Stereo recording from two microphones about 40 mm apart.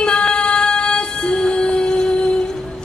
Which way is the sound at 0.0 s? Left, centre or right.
Left.